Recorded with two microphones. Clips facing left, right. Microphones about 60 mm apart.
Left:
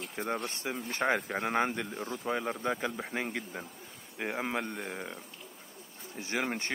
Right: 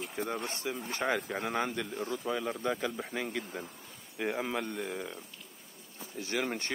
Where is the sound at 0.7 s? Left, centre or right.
Left.